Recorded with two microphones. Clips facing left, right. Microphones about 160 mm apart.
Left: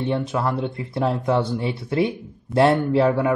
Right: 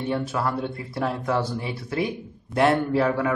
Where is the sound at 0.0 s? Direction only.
20° left (ahead or behind).